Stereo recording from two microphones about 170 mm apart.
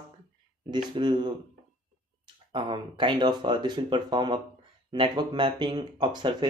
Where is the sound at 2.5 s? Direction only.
25° right (ahead or behind).